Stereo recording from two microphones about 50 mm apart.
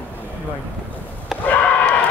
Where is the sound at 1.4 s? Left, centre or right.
Left.